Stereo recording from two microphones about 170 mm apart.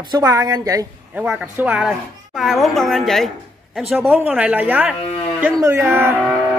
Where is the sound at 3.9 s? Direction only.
10° right (ahead or behind).